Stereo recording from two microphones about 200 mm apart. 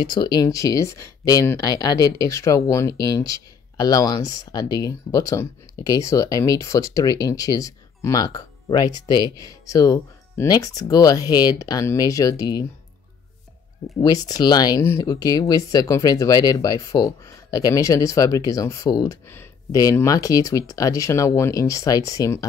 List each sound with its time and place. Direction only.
0.0 s speech: 20° left (ahead or behind)
13.9 s speech: 20° left (ahead or behind)